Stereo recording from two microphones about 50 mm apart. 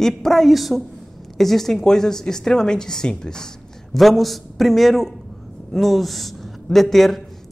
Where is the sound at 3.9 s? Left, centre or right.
Centre.